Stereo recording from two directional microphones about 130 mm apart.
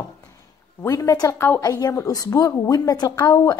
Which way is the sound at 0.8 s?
25° left (ahead or behind).